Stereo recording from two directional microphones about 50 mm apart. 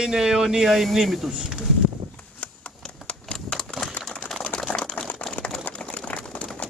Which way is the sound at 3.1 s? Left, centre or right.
Left.